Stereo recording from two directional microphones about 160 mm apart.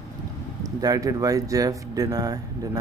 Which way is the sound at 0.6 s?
25° right (ahead or behind).